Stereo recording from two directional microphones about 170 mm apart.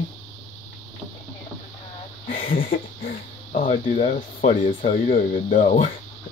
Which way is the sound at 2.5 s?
55° left (ahead or behind).